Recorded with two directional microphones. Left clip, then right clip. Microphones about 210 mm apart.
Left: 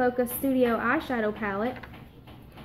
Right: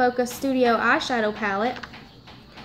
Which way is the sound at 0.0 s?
10° right (ahead or behind).